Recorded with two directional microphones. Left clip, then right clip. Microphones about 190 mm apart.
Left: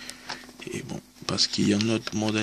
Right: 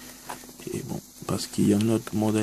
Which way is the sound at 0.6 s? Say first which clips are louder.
Right 4 dB; 5° right (ahead or behind).